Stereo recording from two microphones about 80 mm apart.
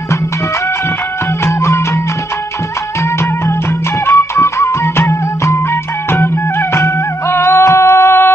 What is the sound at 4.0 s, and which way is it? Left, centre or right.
Music, left.